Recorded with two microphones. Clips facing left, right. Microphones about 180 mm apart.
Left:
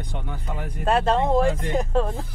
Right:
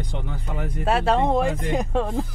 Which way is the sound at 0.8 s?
5° right (ahead or behind).